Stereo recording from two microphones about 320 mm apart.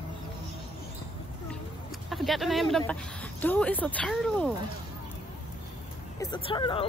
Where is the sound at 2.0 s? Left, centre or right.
Centre.